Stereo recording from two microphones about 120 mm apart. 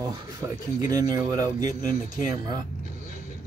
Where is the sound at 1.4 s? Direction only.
30° right (ahead or behind).